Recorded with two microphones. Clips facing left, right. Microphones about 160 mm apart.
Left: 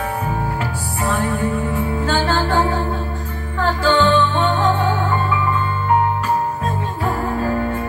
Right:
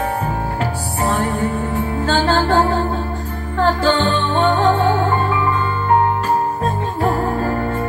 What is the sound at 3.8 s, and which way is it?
Music, 35° right (ahead or behind).